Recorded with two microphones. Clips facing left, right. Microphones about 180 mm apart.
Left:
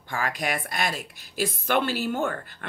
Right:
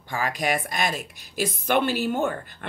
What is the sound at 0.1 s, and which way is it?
A woman's voice, 20° right (ahead or behind).